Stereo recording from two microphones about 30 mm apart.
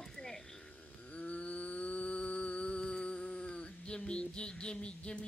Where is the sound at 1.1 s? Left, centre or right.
Left.